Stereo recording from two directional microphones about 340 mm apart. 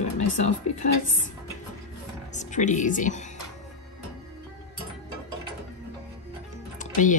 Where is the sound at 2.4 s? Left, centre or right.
Left.